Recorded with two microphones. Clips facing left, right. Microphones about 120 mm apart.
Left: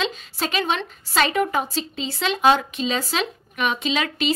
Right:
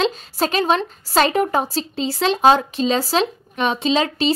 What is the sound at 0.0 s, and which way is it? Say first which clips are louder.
A woman's voice: right 6 dB; 40° right (ahead or behind).